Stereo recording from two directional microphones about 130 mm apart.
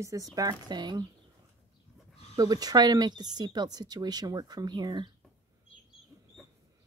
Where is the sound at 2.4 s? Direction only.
30° right (ahead or behind).